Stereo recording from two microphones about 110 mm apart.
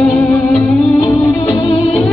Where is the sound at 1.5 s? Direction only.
55° left (ahead or behind).